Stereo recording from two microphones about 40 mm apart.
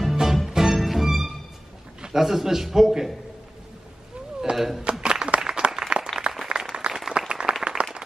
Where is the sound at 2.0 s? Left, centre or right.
Centre.